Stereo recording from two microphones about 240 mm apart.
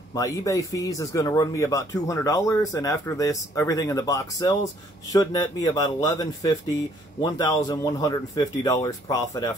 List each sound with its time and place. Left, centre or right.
0.1 s speech: centre